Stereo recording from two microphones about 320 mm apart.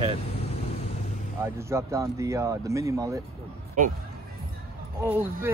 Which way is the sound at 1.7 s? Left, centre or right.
Centre.